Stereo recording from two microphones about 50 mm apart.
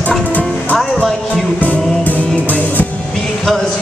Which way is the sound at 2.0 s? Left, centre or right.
Left.